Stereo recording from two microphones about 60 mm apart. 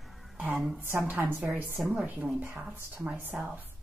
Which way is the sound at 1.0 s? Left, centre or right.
Right.